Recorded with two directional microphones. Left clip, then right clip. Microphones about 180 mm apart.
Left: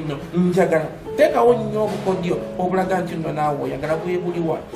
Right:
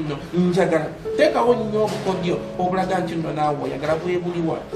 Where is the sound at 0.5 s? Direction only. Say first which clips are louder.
Left 2 dB; 15° left (ahead or behind).